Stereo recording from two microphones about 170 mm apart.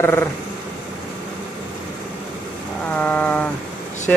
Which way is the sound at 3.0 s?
10° left (ahead or behind).